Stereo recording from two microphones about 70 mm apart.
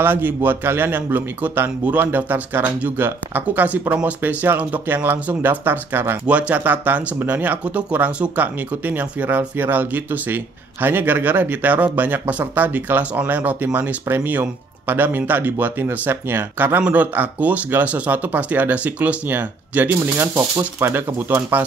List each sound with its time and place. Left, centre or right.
0.0 s speech: right
6.2 s speech: centre
20.3 s speech: right
20.9 s speech: right